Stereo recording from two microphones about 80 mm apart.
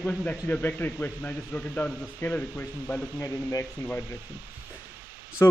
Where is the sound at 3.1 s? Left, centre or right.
Left.